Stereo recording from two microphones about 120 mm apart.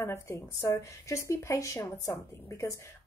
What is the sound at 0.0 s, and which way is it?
Speech, 25° left (ahead or behind).